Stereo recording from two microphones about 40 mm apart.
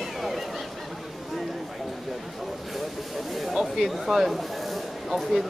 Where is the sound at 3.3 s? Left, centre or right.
Centre.